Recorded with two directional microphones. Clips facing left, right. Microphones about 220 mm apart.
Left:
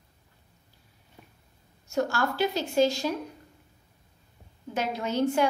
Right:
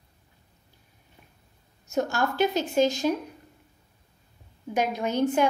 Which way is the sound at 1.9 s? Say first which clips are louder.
Right 1 dB; 20° right (ahead or behind).